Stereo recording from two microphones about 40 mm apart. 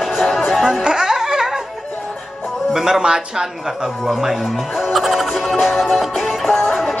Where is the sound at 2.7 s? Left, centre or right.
Centre.